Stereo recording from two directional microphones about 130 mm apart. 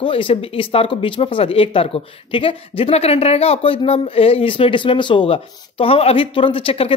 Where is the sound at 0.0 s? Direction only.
45° left (ahead or behind).